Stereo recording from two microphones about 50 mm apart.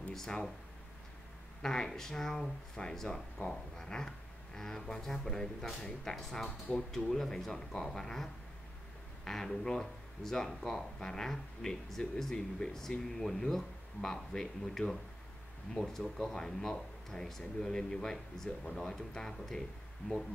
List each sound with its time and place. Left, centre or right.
0.1 s speech: centre
1.6 s speech: centre